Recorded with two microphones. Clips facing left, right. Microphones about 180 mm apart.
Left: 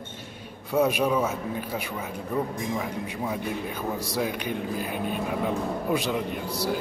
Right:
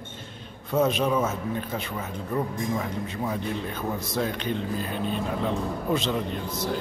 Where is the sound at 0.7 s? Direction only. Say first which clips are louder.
Even; 10° left (ahead or behind).